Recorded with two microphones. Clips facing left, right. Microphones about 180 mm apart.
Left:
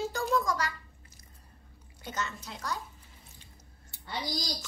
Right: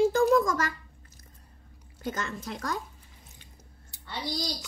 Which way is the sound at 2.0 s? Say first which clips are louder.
Right 4 dB; 50° right (ahead or behind).